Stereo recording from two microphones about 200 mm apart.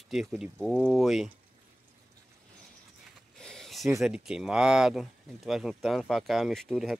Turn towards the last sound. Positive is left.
turn(degrees=0)  # may be behind; listen again after turning